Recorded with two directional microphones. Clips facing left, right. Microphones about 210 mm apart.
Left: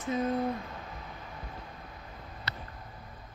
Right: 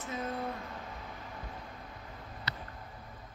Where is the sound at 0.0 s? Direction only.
20° left (ahead or behind).